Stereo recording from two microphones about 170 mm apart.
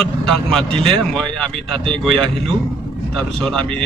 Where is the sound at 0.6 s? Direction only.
35° right (ahead or behind).